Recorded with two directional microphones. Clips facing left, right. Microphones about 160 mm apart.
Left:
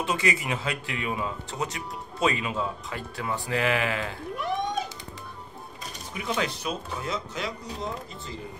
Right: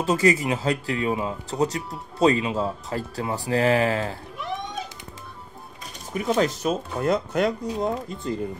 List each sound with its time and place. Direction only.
0.0 s speech: 40° right (ahead or behind)
6.1 s speech: 40° right (ahead or behind)